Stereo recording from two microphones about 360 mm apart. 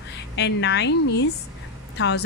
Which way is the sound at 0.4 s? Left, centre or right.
Left.